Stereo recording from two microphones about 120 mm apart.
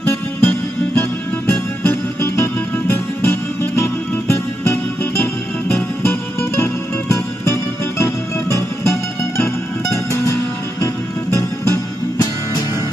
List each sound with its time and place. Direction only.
0.0 s music: 15° left (ahead or behind)
10.1 s music: 25° left (ahead or behind)